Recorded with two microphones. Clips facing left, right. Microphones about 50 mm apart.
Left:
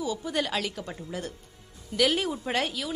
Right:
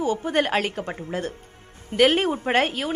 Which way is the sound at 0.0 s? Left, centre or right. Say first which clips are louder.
Right 7 dB; right.